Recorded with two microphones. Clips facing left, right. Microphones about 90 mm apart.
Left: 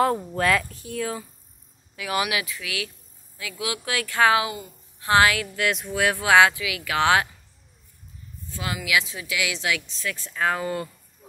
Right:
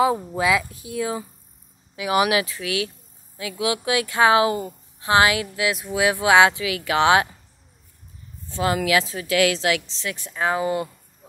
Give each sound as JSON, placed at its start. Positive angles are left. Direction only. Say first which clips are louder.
{"t": 0.0, "sound": "a woman's voice", "louder": "right 2 dB", "side_deg": -5}
{"t": 4.5, "sound": "a woman's voice", "louder": "right 10 dB", "side_deg": -40}
{"t": 5.0, "sound": "a woman's voice", "louder": "right 1 dB", "side_deg": -20}
{"t": 6.6, "sound": "a woman's voice", "louder": "right 4 dB", "side_deg": -30}
{"t": 8.5, "sound": "a woman's voice", "louder": "right 7 dB", "side_deg": -30}
{"t": 9.8, "sound": "speech", "louder": "right 1 dB", "side_deg": -20}